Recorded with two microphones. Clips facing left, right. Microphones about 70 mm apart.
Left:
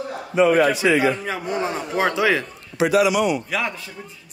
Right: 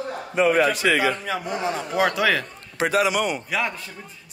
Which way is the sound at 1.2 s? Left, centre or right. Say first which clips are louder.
Left 1 dB; left.